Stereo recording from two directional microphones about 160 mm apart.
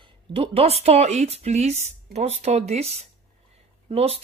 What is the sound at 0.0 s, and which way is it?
Speech, 35° right (ahead or behind).